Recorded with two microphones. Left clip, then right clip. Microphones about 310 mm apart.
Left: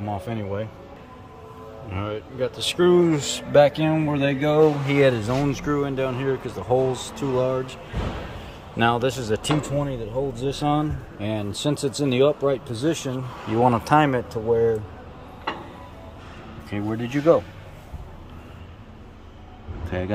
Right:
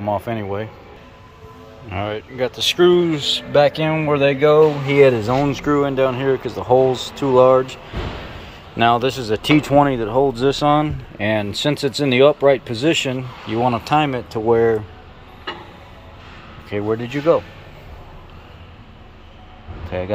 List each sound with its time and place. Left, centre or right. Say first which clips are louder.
0.0 s speech: right 8 dB; centre
1.9 s speech: right 6 dB; centre
16.7 s speech: right 6 dB; centre
19.9 s speech: right 4 dB; centre